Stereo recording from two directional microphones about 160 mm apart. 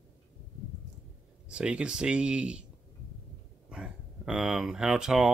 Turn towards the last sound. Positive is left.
turn(degrees=-5)  # may be behind; listen again after turning